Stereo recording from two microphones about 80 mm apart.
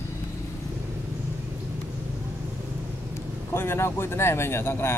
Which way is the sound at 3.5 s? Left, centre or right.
Left.